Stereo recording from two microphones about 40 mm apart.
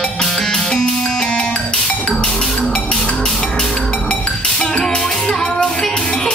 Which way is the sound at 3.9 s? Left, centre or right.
Left.